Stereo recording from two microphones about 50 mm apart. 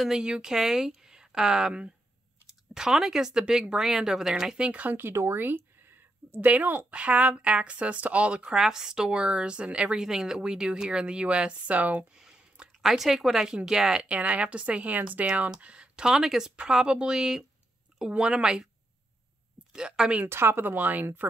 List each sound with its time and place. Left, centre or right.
0.2 s speech: centre
4.6 s speech: right
5.1 s speech: right
5.4 s a sound: right
6.4 s speech: right
6.9 s speech: right
8.5 s speech: centre; by 12.1 s right
12.1 s speech: centre
19.7 s speech: centre
20.2 s speech: right